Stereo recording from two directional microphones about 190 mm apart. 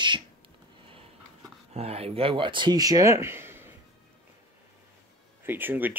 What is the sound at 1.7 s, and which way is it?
Speech, 35° right (ahead or behind).